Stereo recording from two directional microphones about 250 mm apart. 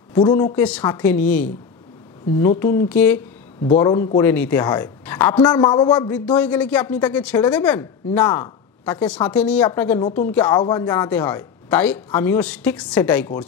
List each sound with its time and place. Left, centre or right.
0.1 s speech: centre
2.6 s speech: centre
3.6 s a man's voice: left
4.2 s speech: centre
6.1 s speech: centre